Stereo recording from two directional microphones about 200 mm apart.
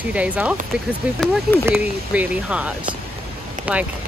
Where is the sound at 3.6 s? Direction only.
40° right (ahead or behind).